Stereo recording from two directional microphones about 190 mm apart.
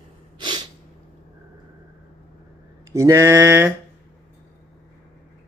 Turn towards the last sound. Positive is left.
turn(degrees=-15)  # may be behind; listen again after turning